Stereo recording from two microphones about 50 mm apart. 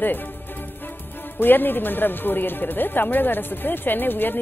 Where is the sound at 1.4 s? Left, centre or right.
Left.